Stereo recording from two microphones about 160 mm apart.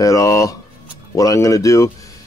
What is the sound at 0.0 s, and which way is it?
Speech, 20° left (ahead or behind).